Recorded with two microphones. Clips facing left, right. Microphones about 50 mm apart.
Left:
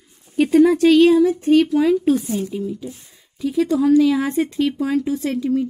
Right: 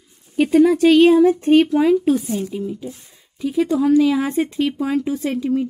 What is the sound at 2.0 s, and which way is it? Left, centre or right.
Speech, centre.